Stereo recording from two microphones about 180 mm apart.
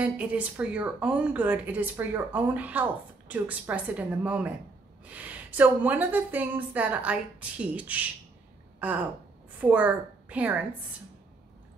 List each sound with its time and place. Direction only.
0.0 s a woman's voice: 5° right (ahead or behind)
8.7 s a sound: 10° right (ahead or behind)
9.6 s a woman's voice: 10° right (ahead or behind)